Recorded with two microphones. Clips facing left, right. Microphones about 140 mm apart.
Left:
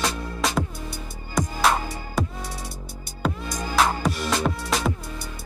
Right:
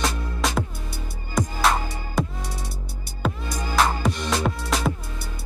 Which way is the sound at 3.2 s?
Centre (ahead or behind).